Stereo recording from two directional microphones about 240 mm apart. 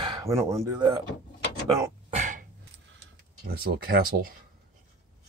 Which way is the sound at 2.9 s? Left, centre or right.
Right.